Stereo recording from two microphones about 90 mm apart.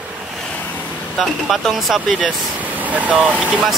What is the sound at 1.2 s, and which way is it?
Speech, centre (ahead or behind).